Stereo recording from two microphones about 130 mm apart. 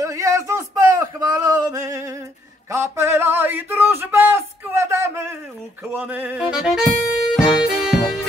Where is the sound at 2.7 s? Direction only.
20° right (ahead or behind); by 6.9 s 5° right (ahead or behind).